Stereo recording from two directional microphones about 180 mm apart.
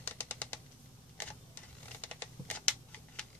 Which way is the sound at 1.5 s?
10° left (ahead or behind).